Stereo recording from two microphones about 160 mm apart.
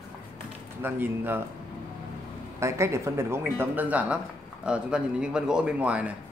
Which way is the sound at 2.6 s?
15° right (ahead or behind).